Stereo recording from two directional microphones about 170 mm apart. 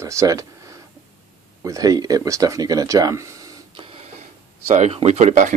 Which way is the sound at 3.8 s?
35° right (ahead or behind).